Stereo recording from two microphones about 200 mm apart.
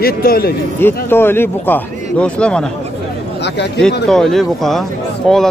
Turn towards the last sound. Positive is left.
turn(degrees=0)  # may be behind; listen again after turning